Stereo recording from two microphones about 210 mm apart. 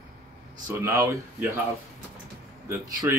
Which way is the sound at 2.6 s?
15° right (ahead or behind).